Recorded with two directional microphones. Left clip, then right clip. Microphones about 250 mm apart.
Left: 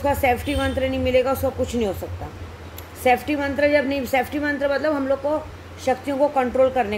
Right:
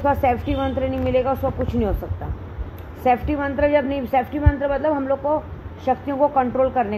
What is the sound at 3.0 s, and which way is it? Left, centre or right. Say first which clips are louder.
A woman's voice: even; centre.